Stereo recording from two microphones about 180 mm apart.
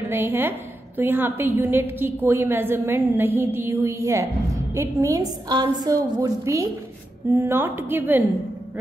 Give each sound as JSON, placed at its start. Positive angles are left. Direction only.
{"t": 0.1, "sound": "a woman's voice", "side_deg": -15}